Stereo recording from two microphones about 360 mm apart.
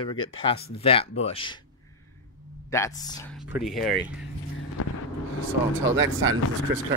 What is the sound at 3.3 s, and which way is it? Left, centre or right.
Speech, centre.